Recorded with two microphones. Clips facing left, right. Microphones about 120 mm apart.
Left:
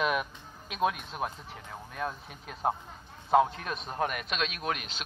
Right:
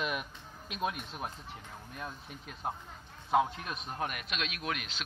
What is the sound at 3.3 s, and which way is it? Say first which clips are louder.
A man's voice: left 5 dB; 40° left (ahead or behind).